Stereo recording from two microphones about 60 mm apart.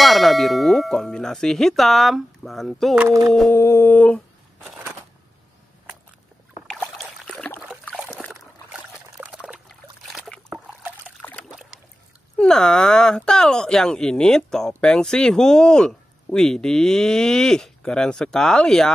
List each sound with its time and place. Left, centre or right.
0.0 s clang: centre
3.1 s a sound: right
3.5 s speech: left
3.9 s speech: left
7.2 s a sound: centre
9.2 s trickle: centre
10.3 s trickle: centre
12.4 s speech: centre